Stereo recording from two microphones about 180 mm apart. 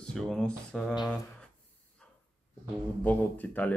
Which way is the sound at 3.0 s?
10° left (ahead or behind).